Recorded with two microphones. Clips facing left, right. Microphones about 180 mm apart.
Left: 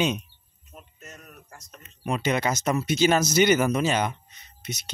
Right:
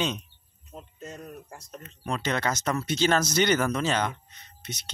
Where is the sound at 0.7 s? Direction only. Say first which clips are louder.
Right 5 dB; 30° right (ahead or behind).